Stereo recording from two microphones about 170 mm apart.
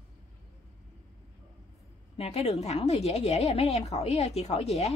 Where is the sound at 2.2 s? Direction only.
40° left (ahead or behind).